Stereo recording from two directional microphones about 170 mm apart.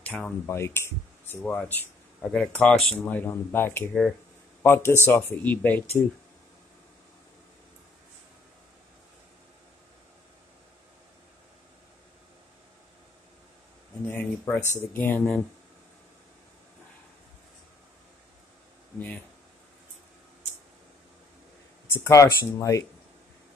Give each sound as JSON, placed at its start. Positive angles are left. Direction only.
{"t": 0.0, "sound": "speech", "side_deg": 10}
{"t": 14.0, "sound": "speech", "side_deg": 10}
{"t": 18.9, "sound": "a sound", "side_deg": 10}
{"t": 21.9, "sound": "speech", "side_deg": 20}